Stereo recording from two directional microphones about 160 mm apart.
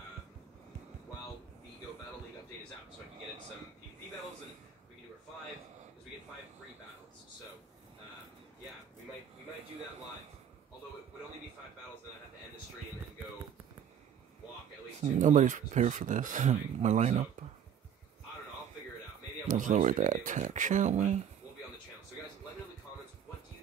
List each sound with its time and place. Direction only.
15.0 s speech: 50° right (ahead or behind)
19.4 s speech: 50° right (ahead or behind)